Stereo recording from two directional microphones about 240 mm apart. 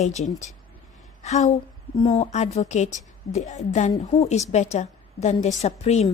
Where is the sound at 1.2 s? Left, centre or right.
Left.